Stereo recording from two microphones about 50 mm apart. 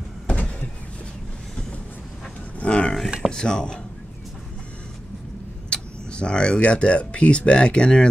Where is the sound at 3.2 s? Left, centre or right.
Centre.